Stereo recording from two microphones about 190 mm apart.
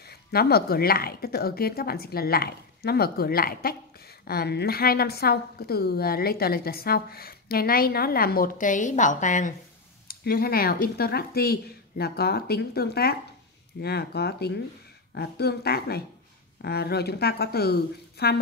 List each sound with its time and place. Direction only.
0.3 s a woman's voice: 55° left (ahead or behind)
10.0 s a woman's voice: 50° left (ahead or behind)